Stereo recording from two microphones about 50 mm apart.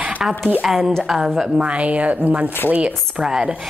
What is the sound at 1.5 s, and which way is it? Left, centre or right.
Speech, right.